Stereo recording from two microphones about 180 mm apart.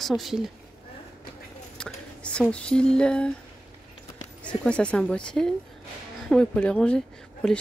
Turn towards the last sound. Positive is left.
turn(degrees=5)  # may be behind; listen again after turning